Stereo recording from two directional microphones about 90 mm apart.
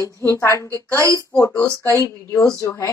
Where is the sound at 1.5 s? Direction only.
15° left (ahead or behind).